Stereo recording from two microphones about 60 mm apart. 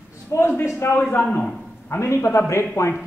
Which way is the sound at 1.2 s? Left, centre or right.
Centre.